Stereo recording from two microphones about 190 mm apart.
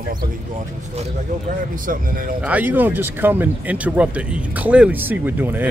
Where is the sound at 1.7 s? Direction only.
45° right (ahead or behind).